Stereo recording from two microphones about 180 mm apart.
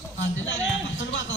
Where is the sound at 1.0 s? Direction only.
85° left.